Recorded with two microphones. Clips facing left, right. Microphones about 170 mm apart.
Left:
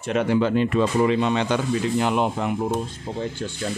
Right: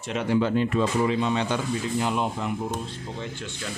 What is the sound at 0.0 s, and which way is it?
Speech, 55° left (ahead or behind).